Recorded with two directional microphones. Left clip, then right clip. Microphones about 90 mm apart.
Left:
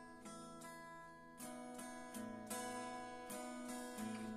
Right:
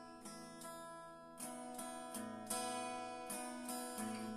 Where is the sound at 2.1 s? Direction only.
35° right (ahead or behind).